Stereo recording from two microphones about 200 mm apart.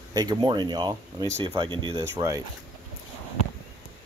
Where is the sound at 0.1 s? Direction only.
20° right (ahead or behind).